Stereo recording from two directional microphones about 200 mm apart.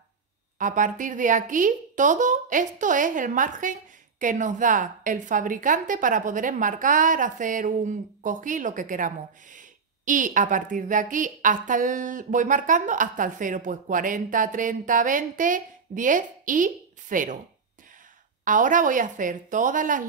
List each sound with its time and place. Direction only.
0.6 s a woman's voice: 40° right (ahead or behind)
18.4 s a woman's voice: 40° right (ahead or behind)